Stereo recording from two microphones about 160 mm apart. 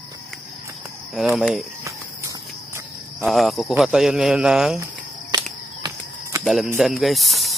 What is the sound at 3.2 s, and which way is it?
Speech, centre (ahead or behind).